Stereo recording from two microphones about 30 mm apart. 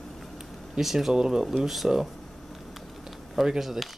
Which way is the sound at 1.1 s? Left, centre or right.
Right.